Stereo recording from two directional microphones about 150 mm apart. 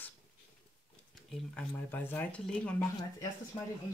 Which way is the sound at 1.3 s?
10° left (ahead or behind).